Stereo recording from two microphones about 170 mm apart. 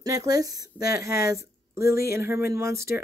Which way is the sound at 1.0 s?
65° left (ahead or behind).